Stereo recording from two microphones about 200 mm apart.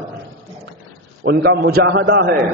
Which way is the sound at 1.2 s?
60° right (ahead or behind).